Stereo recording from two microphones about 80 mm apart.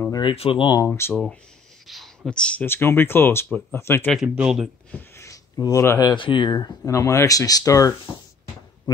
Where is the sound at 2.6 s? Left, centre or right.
Left.